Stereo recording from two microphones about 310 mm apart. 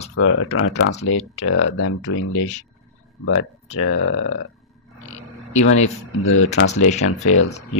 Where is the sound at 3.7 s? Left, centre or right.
Left.